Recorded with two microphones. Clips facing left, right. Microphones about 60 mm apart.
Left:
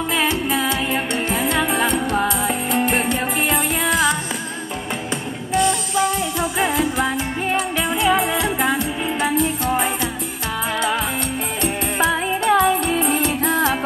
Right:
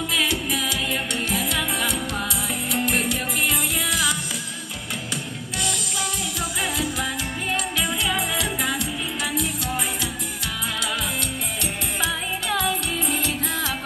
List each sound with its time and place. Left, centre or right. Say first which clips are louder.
0.1 s music: left 4 dB; left
5.5 s music: left 12 dB; left
11.6 s music: left 8 dB; left